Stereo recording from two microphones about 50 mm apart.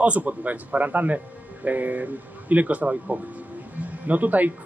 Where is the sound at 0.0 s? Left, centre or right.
Right.